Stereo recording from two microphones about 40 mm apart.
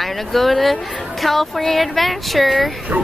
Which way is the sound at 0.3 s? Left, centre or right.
Centre.